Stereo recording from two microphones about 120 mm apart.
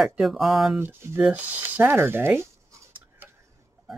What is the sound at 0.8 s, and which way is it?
Speech, 20° right (ahead or behind).